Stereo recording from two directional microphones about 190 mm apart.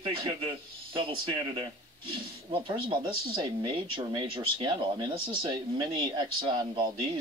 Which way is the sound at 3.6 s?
20° right (ahead or behind).